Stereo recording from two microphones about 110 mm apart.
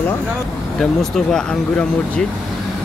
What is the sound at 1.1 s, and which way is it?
Speech, 5° left (ahead or behind).